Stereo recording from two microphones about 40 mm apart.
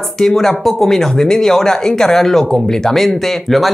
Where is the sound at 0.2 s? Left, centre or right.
Centre.